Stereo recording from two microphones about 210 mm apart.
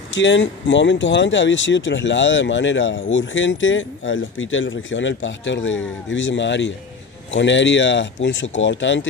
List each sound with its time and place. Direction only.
0.1 s speech: 60° left (ahead or behind)